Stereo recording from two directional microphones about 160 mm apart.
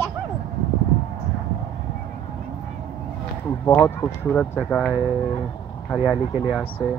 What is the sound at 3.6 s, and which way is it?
Speech, 10° left (ahead or behind).